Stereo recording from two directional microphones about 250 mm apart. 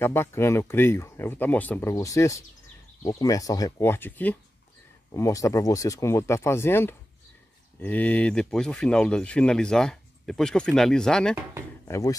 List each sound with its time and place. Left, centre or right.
0.0 s speech: centre